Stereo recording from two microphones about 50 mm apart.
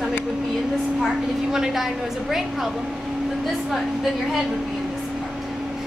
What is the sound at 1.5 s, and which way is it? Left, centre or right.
A woman's voice, centre.